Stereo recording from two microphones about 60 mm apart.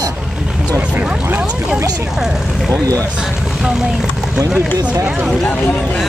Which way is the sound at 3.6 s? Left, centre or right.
Centre.